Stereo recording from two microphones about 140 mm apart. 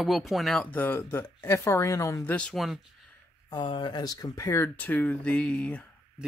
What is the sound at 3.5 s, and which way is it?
Speech, 35° left (ahead or behind).